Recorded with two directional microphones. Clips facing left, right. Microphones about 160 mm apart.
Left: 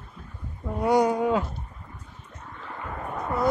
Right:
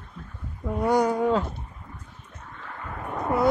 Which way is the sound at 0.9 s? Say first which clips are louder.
Left 1 dB; 20° left (ahead or behind).